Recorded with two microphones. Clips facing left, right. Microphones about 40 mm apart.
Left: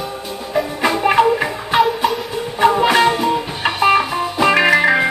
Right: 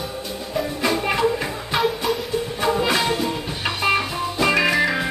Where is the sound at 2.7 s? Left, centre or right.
Left.